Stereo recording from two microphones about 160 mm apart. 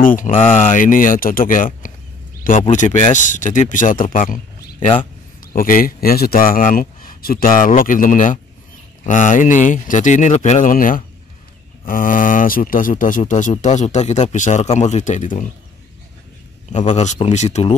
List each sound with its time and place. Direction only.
0.0 s a man's voice: 55° left (ahead or behind)
4.7 s a man's voice: 35° left (ahead or behind)
5.4 s a man's voice: 60° left (ahead or behind)
16.8 s speech: 45° left (ahead or behind)